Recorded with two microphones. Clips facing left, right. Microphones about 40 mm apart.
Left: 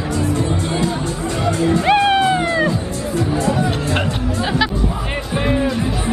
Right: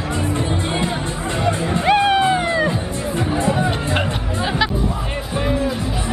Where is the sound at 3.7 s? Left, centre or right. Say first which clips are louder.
Left 1 dB; centre.